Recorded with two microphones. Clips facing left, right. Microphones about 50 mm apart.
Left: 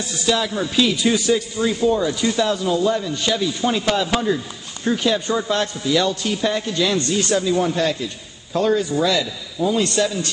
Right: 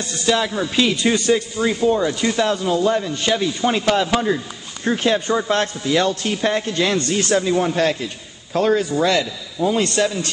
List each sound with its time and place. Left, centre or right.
0.3 s a man's voice: right
7.5 s a man's voice: right